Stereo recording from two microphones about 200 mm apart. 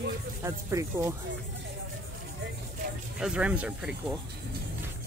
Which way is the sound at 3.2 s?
5° right (ahead or behind).